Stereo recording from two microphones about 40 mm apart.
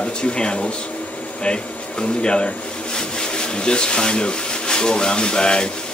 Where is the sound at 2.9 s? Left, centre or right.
Left.